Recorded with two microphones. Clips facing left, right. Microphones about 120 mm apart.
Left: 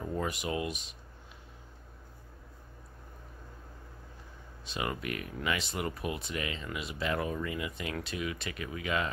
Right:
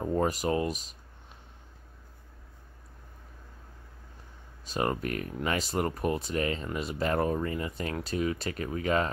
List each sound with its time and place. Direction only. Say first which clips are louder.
0.0 s speech: right 7 dB; 40° right (ahead or behind)
4.6 s speech: right 6 dB; 40° right (ahead or behind)